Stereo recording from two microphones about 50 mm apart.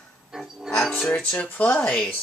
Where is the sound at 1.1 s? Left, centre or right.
Left.